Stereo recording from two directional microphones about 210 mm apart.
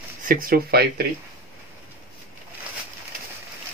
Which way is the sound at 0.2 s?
40° right (ahead or behind).